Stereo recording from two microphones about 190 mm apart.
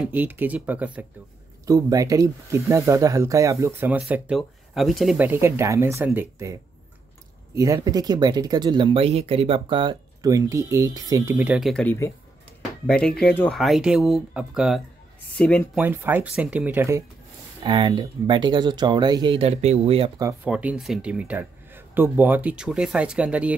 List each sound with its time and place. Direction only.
0.0 s speech: 10° right (ahead or behind)
1.7 s speech: 20° right (ahead or behind)
11.7 s speech: 10° left (ahead or behind)
15.8 s speech: 10° right (ahead or behind)
17.6 s speech: 25° right (ahead or behind)
20.4 s speech: 5° right (ahead or behind)